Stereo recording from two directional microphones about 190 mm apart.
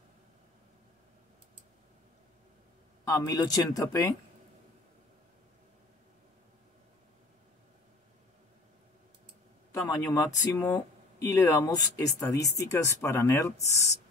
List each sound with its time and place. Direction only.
3.1 s speech: 20° left (ahead or behind)
9.9 s speech: 15° left (ahead or behind)